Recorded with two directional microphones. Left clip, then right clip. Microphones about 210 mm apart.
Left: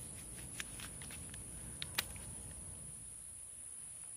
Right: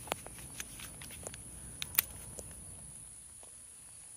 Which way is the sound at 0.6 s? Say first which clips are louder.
Left 1 dB; centre (ahead or behind).